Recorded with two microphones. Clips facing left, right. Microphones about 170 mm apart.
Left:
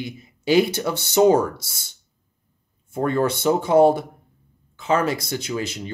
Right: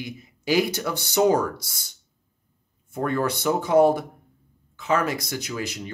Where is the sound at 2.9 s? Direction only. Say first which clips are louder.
Left 4 dB; 25° left (ahead or behind).